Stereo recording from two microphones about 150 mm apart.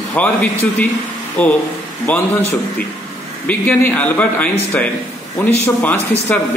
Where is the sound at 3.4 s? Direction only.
10° left (ahead or behind).